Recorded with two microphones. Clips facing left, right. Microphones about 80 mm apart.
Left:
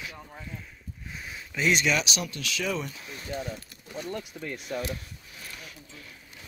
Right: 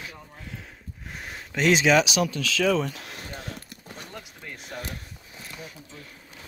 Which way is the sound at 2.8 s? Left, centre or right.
Right.